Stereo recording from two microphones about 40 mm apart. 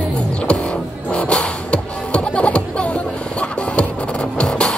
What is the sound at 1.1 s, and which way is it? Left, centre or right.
Music, left.